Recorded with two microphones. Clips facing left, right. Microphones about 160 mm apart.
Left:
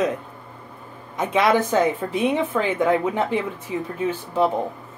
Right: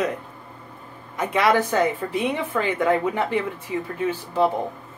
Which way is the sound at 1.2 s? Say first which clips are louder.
Left 1 dB; 15° left (ahead or behind).